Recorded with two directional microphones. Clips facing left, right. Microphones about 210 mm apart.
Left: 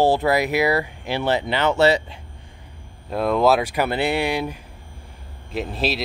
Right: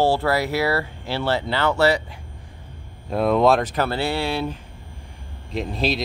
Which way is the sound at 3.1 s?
Centre (ahead or behind).